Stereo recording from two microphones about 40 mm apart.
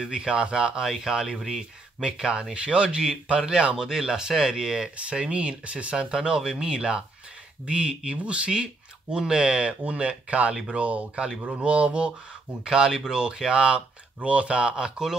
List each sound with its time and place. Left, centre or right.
0.0 s speech: right
12.6 s speech: centre